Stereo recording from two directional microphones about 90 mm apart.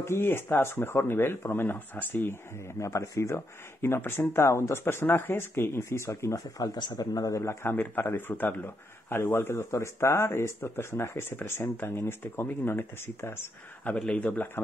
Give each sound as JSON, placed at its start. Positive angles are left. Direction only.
{"t": 0.0, "sound": "speech", "side_deg": 25}
{"t": 2.8, "sound": "speech", "side_deg": 35}
{"t": 6.6, "sound": "speech", "side_deg": 45}
{"t": 13.9, "sound": "speech", "side_deg": 15}